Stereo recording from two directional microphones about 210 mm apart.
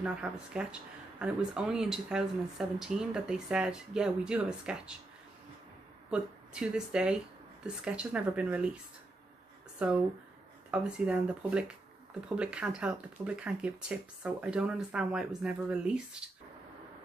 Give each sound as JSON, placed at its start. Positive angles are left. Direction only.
{"t": 0.0, "sound": "speech", "side_deg": -5}
{"t": 6.0, "sound": "speech", "side_deg": -5}
{"t": 9.8, "sound": "speech", "side_deg": -5}